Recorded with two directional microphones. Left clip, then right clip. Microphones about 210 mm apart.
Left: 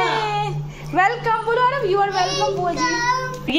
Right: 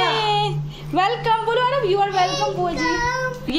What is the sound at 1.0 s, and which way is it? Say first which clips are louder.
A child's voice: left 1 dB; 15° right (ahead or behind).